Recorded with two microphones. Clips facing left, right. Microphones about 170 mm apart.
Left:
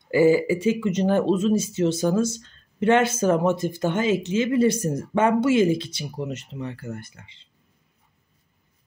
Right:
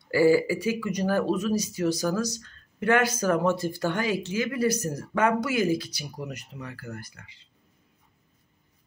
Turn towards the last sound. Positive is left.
turn(degrees=25)  # may be behind; listen again after turning